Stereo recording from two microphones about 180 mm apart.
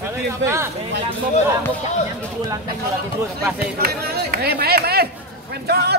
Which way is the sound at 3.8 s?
60° right (ahead or behind).